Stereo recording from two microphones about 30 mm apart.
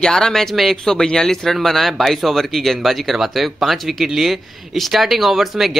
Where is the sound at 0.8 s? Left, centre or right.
Centre.